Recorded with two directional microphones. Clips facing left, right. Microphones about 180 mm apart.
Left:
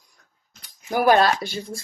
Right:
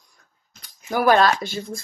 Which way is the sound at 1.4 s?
50° right (ahead or behind).